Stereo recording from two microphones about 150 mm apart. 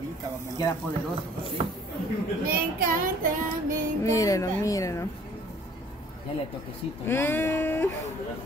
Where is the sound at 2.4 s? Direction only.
80° right.